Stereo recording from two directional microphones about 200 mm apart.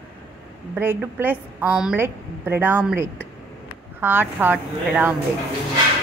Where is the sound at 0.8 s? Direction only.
10° right (ahead or behind).